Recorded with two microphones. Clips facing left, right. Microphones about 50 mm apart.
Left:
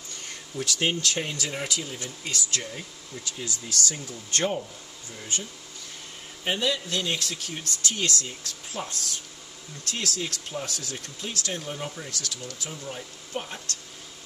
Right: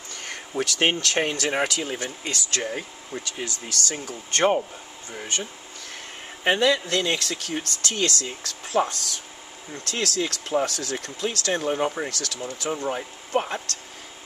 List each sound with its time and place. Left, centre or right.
0.2 s a sound: right
1.0 s speech: right
2.5 s speech: right
3.1 s speech: right
6.4 s speech: right
9.9 s speech: right
10.5 s speech: right
13.3 s speech: right